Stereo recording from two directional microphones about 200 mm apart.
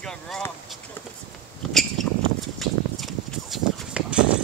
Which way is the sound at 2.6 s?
Centre (ahead or behind).